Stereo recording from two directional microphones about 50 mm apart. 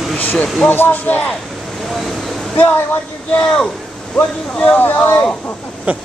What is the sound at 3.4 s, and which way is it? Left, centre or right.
Speech, left.